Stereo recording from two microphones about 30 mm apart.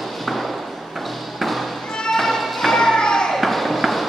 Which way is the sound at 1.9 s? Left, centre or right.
Left.